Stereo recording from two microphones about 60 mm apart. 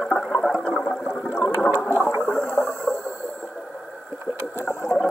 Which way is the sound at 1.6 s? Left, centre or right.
Left.